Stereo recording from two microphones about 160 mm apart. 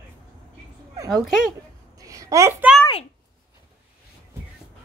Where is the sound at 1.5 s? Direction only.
20° right (ahead or behind).